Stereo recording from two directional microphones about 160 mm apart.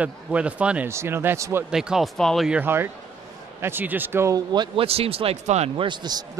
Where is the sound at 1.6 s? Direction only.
5° right (ahead or behind).